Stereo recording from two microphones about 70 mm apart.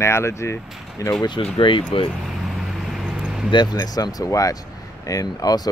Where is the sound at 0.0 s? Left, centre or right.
Left.